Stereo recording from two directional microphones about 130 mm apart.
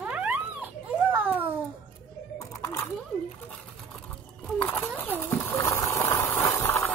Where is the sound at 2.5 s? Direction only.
20° left (ahead or behind).